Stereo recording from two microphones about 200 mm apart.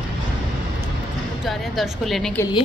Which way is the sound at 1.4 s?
Centre (ahead or behind).